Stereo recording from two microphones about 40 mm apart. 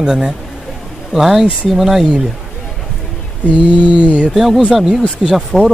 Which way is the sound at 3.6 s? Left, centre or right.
Right.